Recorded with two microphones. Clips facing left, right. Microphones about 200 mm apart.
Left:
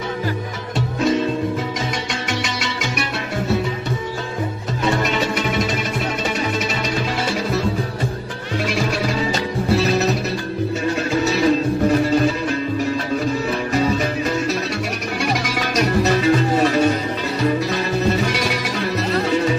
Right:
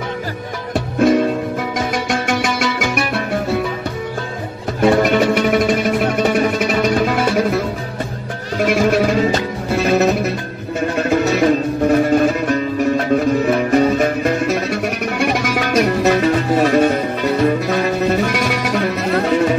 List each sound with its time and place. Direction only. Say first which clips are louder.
0.7 s music: right 5 dB; 55° right (ahead or behind)
4.8 s music: right 8 dB; 55° right (ahead or behind)